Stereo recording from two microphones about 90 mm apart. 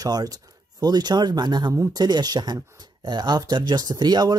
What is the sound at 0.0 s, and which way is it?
Speech, 45° right (ahead or behind).